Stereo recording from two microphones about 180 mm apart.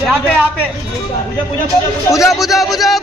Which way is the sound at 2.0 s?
15° left (ahead or behind).